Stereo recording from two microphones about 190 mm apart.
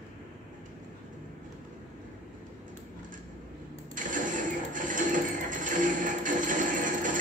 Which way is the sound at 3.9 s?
45° right (ahead or behind).